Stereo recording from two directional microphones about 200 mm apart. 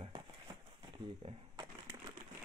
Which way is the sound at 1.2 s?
25° right (ahead or behind).